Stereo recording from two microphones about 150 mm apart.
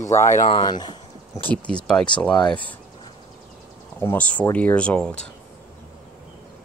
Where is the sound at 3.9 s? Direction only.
10° left (ahead or behind).